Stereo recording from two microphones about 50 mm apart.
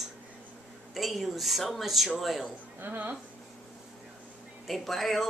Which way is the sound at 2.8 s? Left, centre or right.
Right.